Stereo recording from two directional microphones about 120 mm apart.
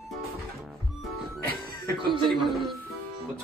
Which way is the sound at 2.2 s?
Centre (ahead or behind).